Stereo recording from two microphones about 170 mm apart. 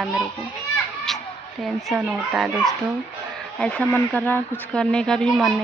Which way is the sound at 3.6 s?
10° left (ahead or behind).